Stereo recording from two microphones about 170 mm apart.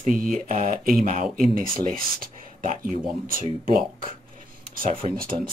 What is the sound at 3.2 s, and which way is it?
Speech, 55° right (ahead or behind).